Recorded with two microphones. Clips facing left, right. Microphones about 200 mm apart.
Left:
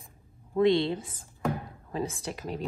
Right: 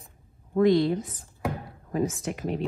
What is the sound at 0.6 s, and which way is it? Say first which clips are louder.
A woman's voice: right 3 dB; 25° left (ahead or behind).